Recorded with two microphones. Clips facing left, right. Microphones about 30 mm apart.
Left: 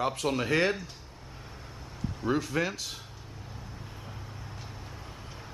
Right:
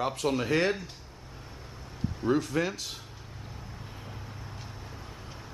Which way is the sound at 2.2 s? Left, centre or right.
Centre.